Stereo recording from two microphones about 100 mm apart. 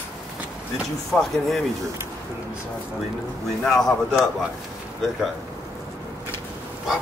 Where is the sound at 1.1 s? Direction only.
5° left (ahead or behind).